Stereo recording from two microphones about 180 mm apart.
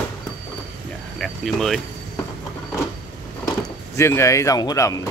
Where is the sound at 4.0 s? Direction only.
15° left (ahead or behind).